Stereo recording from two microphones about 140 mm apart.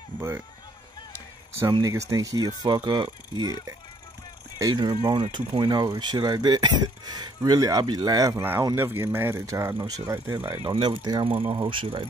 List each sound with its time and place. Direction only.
0.1 s run: 30° left (ahead or behind)
1.7 s speech: 25° right (ahead or behind)
4.6 s speech: 25° right (ahead or behind)
10.7 s speech: 35° right (ahead or behind)